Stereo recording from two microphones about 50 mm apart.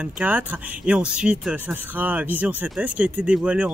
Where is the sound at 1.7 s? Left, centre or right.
Right.